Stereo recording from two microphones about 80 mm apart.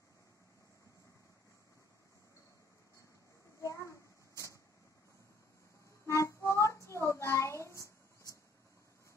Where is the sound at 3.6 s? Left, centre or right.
Left.